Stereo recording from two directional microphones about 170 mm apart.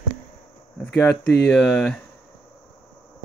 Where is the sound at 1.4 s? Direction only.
5° left (ahead or behind).